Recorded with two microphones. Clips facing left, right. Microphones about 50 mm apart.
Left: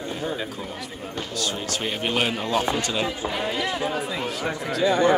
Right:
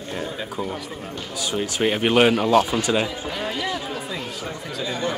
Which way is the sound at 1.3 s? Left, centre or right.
Centre.